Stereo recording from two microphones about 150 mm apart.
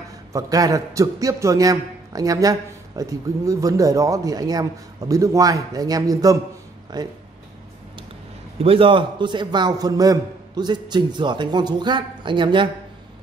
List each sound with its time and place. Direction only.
0.3 s a man's voice: 25° right (ahead or behind)
8.6 s a man's voice: 35° right (ahead or behind)